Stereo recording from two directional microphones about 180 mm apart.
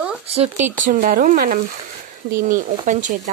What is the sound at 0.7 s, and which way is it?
Speech, 50° right (ahead or behind).